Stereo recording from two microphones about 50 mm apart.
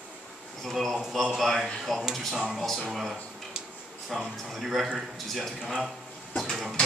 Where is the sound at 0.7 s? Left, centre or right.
Centre.